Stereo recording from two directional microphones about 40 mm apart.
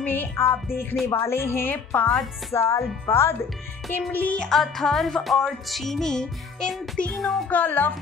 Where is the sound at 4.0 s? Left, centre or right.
Left.